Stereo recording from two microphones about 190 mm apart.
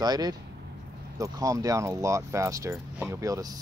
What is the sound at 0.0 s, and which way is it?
Speech, 20° right (ahead or behind).